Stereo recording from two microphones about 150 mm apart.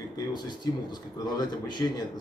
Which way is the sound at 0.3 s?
30° left (ahead or behind).